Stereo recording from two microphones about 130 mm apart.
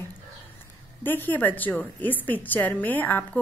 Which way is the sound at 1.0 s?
15° left (ahead or behind).